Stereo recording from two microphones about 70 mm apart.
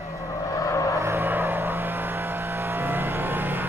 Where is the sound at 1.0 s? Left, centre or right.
Right.